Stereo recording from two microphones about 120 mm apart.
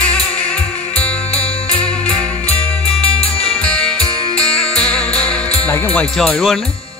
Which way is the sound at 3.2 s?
55° left (ahead or behind).